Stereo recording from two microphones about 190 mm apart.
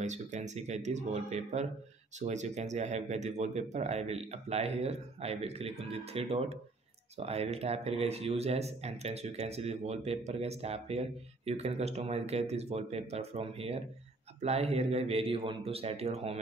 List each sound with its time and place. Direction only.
0.0 s speech: 40° right (ahead or behind)